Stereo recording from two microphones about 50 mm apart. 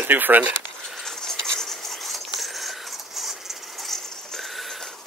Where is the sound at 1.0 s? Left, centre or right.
Centre.